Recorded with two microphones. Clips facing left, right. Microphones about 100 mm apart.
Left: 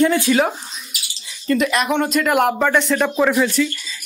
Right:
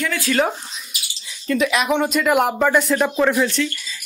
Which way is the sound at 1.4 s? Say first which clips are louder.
Left 1 dB; centre (ahead or behind).